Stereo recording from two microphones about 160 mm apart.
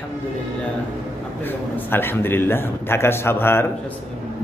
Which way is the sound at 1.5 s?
15° left (ahead or behind).